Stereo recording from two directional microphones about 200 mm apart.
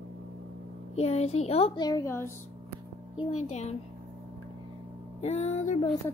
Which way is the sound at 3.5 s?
35° left (ahead or behind).